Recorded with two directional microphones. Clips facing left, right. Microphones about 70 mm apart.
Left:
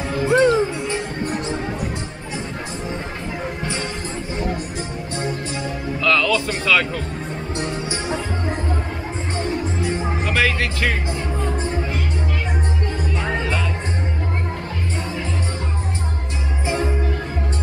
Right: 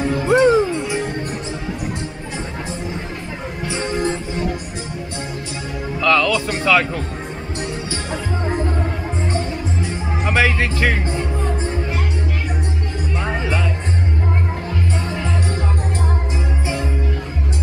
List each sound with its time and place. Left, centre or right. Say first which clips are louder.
0.2 s music: right 1 dB; right
5.9 s music: right 2 dB; centre
10.2 s music: right 4 dB; centre
13.2 s music: right 1 dB; centre
16.6 s music: left 5 dB; left